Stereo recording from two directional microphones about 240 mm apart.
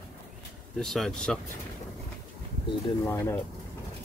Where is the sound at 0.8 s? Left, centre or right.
Centre.